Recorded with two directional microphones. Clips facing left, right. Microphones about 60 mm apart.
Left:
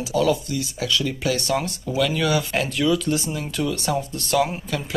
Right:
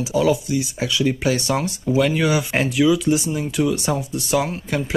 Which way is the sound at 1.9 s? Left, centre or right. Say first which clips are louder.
Right 3 dB; right.